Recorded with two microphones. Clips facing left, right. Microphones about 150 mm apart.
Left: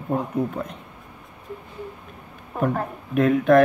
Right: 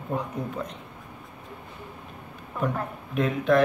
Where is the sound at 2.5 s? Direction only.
50° left (ahead or behind).